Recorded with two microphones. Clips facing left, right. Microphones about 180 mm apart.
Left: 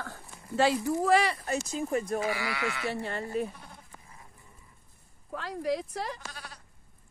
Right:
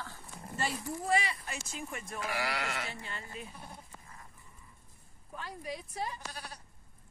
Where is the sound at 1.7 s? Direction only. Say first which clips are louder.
Left 11 dB; 35° left (ahead or behind).